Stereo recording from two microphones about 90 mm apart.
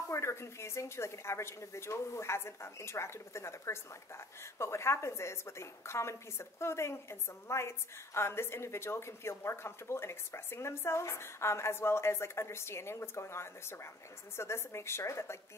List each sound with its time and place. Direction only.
0.1 s a woman's voice: 30° left (ahead or behind)